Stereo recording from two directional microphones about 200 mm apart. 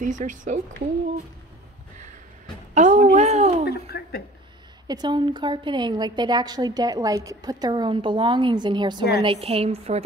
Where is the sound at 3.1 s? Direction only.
35° right (ahead or behind).